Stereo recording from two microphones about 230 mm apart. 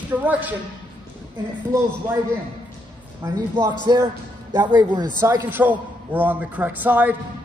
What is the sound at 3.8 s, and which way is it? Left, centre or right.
A man's voice, centre.